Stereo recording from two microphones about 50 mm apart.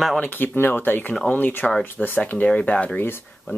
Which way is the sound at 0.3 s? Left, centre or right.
Left.